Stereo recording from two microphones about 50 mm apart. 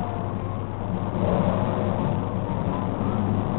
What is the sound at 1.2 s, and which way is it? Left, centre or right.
Vehicle, right.